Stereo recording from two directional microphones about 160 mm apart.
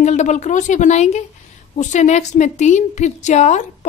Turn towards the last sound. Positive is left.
turn(degrees=50)  # may be behind; listen again after turning